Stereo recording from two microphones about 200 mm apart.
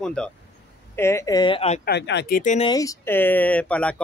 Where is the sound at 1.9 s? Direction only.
60° left (ahead or behind); by 2.6 s 40° left (ahead or behind).